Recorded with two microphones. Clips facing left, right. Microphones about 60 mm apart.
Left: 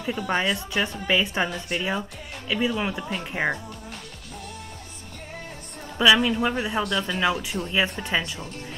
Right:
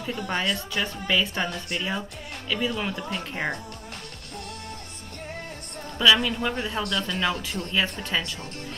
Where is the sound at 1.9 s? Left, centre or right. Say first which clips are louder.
Left 2 dB; centre.